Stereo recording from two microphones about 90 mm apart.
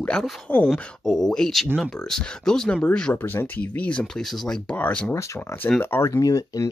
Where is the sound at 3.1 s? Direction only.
25° left (ahead or behind).